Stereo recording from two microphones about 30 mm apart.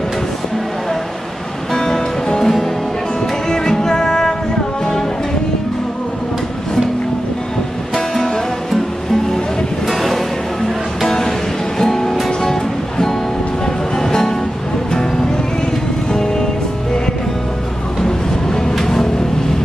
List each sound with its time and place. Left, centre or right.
1.7 s music: left
7.9 s music: centre
9.8 s music: centre
11.1 s music: centre
13.9 s music: centre
16.1 s music: left
18.0 s music: centre